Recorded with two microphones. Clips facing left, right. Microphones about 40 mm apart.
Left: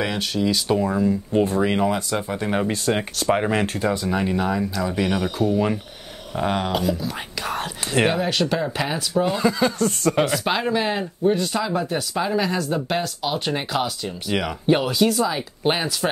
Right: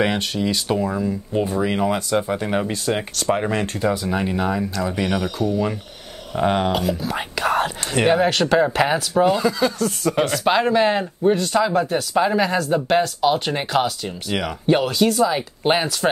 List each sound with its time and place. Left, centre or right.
0.3 s speech: centre
5.4 s speech: centre
6.3 s speech: centre
8.5 s speech: right
9.4 s speech: centre
9.8 s speech: centre
14.3 s speech: centre
15.3 s speech: centre